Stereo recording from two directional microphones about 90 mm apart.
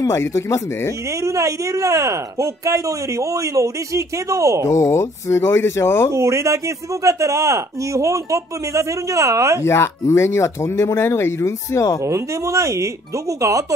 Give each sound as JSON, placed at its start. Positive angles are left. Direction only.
{"t": 0.0, "sound": "speech", "side_deg": 35}
{"t": 1.2, "sound": "speech", "side_deg": -35}
{"t": 4.6, "sound": "speech", "side_deg": 35}
{"t": 6.1, "sound": "speech", "side_deg": -35}
{"t": 9.7, "sound": "speech", "side_deg": 30}
{"t": 12.0, "sound": "speech", "side_deg": -35}